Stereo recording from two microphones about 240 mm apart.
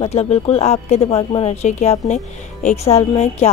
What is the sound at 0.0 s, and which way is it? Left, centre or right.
Speech, left.